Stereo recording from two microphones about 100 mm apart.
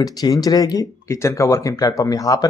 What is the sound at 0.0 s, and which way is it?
Speech, 40° left (ahead or behind).